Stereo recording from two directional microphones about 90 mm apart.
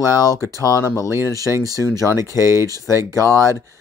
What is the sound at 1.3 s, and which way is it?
Speech, 40° right (ahead or behind).